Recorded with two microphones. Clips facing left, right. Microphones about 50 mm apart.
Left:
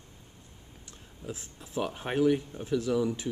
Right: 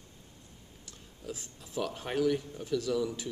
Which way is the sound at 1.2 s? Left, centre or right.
Centre.